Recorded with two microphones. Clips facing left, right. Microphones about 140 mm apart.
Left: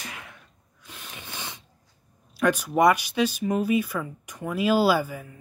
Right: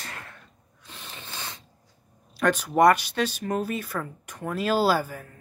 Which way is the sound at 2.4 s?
5° left (ahead or behind).